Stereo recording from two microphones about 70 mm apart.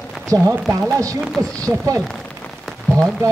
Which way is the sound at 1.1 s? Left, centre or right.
Centre.